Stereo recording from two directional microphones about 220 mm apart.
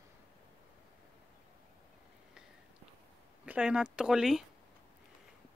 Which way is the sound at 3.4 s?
5° right (ahead or behind).